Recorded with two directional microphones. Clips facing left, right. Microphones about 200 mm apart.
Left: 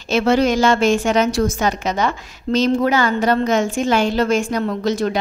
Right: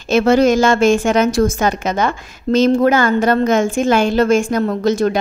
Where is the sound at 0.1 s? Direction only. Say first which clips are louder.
Right 4 dB; 45° right (ahead or behind).